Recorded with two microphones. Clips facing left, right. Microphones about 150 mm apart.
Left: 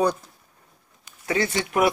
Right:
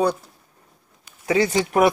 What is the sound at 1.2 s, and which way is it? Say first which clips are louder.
Speech: right 5 dB; 15° right (ahead or behind).